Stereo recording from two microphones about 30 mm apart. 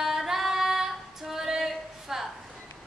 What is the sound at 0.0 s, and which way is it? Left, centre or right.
Female singing, centre.